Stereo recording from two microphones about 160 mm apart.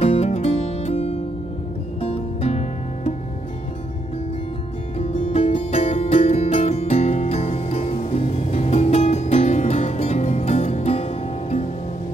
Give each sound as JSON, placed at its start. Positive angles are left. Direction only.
{"t": 0.0, "sound": "music", "side_deg": 40}
{"t": 4.9, "sound": "music", "side_deg": 35}